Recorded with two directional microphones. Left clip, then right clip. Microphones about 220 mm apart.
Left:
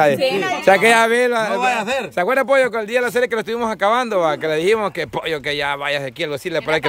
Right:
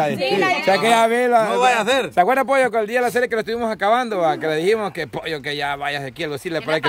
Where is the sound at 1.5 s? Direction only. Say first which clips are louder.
Right 2 dB; 20° right (ahead or behind).